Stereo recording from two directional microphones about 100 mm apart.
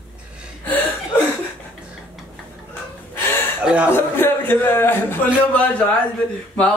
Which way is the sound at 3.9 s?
20° left (ahead or behind).